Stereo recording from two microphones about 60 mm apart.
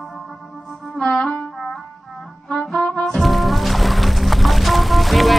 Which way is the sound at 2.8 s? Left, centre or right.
Centre.